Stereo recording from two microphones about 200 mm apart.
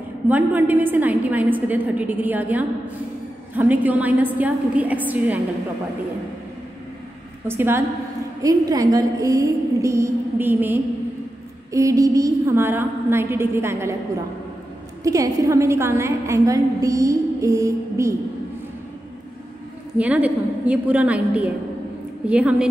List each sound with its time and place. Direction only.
0.3 s a woman's voice: 10° right (ahead or behind)
7.4 s a woman's voice: 10° right (ahead or behind)
15.0 s a woman's voice: 15° right (ahead or behind)
20.0 s a woman's voice: 5° right (ahead or behind)